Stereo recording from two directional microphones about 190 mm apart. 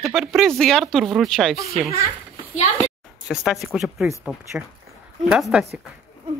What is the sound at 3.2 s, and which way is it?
Speech, centre (ahead or behind).